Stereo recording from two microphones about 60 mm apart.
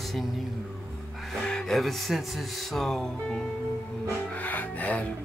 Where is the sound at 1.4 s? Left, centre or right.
Centre.